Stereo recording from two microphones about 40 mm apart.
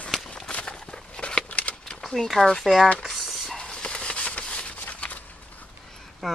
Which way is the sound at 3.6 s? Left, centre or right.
Left.